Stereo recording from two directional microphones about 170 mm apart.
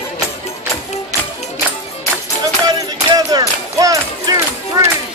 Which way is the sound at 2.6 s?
20° right (ahead or behind).